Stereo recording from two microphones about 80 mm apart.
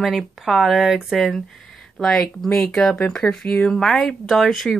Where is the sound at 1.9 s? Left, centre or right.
Centre.